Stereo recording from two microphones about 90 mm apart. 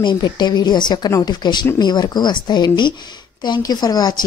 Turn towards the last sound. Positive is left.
turn(degrees=45)  # may be behind; listen again after turning